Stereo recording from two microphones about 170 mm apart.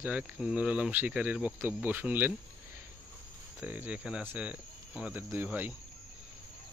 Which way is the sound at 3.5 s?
10° right (ahead or behind).